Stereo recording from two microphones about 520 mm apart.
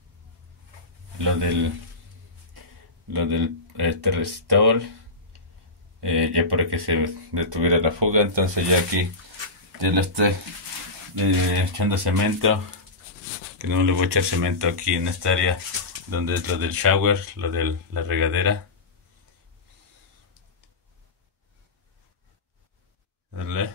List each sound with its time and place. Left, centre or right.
1.1 s speech: right
3.1 s speech: right
5.9 s speech: right
11.7 s speech: right
13.6 s speech: right
23.3 s a sound: right